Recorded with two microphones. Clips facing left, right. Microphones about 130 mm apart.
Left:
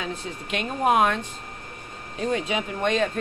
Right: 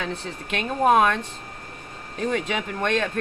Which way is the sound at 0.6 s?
50° right (ahead or behind).